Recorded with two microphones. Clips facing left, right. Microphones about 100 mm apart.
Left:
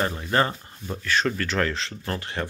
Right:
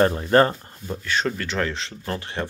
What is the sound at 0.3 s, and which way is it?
Speech, 40° right (ahead or behind).